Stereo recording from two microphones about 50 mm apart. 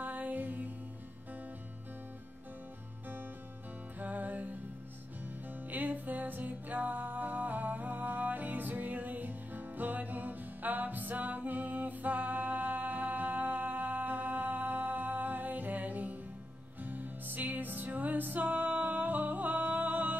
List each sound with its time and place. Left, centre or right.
0.0 s music: right
4.0 s music: right
5.7 s music: right